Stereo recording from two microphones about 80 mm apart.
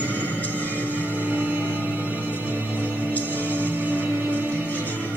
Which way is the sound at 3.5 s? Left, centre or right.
Right.